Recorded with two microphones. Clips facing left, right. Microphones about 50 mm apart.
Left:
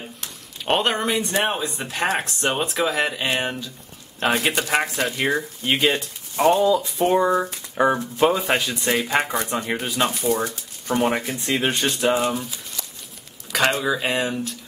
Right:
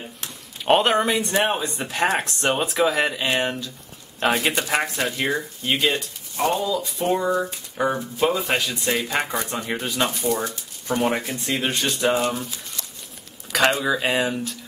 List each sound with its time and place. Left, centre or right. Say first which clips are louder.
0.2 s speech: right 1 dB; centre
10.2 s speech: left 1 dB; left
11.0 s speech: left 1 dB; centre